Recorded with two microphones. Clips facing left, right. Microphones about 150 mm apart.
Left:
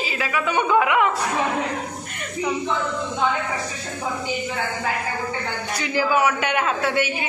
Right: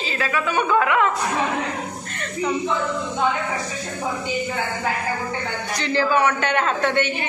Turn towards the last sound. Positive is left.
turn(degrees=10)  # may be behind; listen again after turning